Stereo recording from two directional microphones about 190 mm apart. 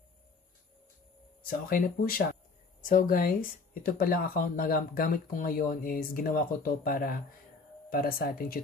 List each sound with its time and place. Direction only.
1.5 s speech: 50° left (ahead or behind)